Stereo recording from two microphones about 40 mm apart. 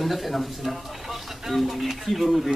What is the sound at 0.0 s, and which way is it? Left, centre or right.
A man's voice, centre.